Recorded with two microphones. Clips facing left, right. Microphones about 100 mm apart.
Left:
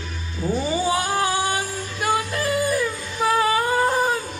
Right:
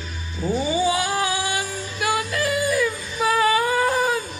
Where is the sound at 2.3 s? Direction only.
35° left (ahead or behind).